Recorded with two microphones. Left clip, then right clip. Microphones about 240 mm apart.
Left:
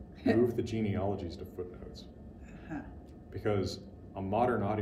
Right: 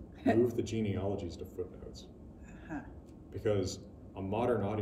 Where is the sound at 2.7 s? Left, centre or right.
Centre.